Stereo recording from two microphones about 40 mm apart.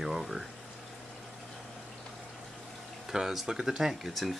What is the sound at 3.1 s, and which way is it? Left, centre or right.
Speech, centre.